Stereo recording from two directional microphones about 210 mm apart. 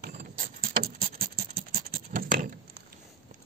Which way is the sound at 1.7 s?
45° right (ahead or behind).